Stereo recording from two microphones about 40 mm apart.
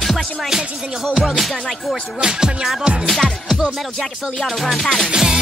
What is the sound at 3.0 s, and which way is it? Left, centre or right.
Music, centre.